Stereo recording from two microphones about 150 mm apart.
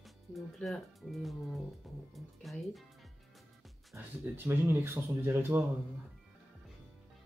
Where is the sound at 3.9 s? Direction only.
15° right (ahead or behind).